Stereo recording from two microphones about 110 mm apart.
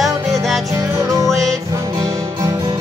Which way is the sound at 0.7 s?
30° right (ahead or behind).